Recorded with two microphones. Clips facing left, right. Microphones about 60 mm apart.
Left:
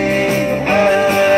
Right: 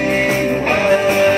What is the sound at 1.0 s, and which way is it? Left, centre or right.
Music, centre.